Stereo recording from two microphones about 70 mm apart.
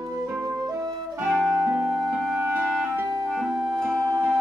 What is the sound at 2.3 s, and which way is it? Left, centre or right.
Clarinet, right.